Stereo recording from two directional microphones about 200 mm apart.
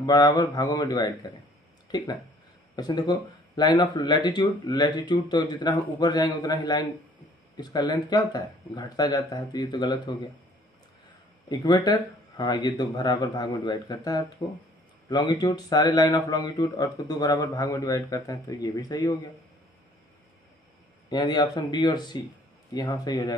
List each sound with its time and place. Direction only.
0.0 s speech: 20° left (ahead or behind)
11.4 s a man's voice: 20° left (ahead or behind)
21.1 s speech: 20° left (ahead or behind)